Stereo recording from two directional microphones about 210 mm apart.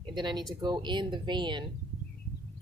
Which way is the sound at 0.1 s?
20° right (ahead or behind).